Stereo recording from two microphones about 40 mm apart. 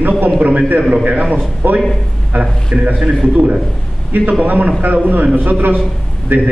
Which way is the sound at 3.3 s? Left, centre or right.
Right.